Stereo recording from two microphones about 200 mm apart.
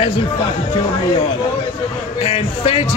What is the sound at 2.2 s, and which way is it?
Speech, 30° left (ahead or behind).